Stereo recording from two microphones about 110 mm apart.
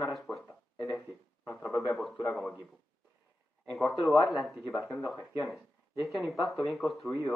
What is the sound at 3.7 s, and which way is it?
Speech, centre (ahead or behind).